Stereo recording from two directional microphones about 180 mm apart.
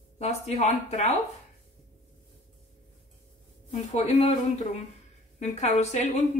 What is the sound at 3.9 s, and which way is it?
A woman's voice, 35° left (ahead or behind).